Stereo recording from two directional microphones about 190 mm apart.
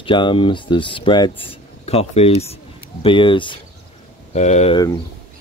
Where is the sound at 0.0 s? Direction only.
25° left (ahead or behind).